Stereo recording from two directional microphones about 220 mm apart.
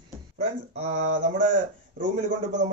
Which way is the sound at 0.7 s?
30° right (ahead or behind).